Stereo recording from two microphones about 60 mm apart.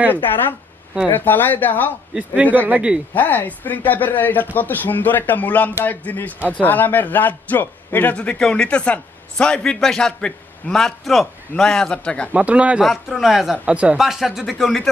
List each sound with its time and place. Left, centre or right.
1.1 s speech: left
2.1 s a man's voice: right
3.2 s a man's voice: left; by 11.9 s centre
11.9 s a man's voice: centre
12.3 s speech: right
12.8 s a man's voice: centre
13.7 s speech: centre
13.9 s a man's voice: centre